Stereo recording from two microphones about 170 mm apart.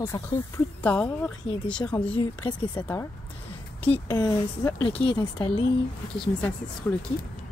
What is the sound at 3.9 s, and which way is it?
Speech, 25° left (ahead or behind).